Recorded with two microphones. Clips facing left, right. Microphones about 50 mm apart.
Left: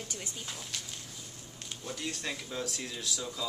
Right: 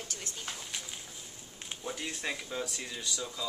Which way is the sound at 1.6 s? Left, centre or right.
Centre.